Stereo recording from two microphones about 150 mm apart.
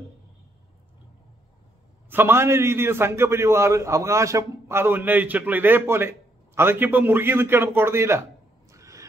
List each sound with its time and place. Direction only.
2.0 s a man's voice: 15° right (ahead or behind)